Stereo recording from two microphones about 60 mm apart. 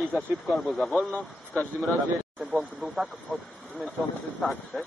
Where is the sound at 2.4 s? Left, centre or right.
Centre.